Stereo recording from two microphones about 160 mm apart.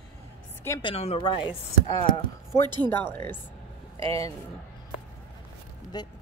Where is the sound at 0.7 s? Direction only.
35° left (ahead or behind).